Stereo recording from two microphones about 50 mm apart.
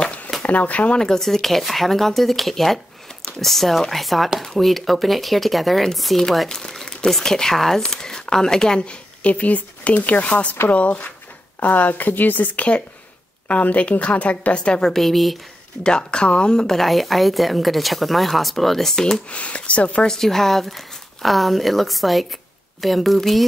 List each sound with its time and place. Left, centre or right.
0.4 s speech: left
0.9 s a woman's voice: centre
14.9 s a woman's voice: centre
15.8 s a woman's voice: centre
19.3 s a woman's voice: left
20.1 s a woman's voice: centre